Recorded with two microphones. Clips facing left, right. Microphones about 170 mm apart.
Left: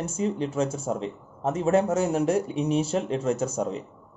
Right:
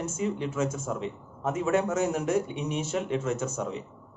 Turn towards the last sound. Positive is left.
turn(degrees=35)  # may be behind; listen again after turning